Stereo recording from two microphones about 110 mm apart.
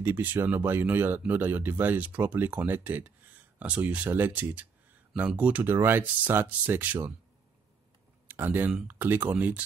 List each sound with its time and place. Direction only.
0.0 s speech: 15° right (ahead or behind)
8.3 s speech: 20° right (ahead or behind)